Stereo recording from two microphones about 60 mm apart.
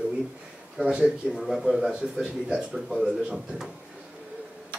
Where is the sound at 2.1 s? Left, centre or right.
Centre.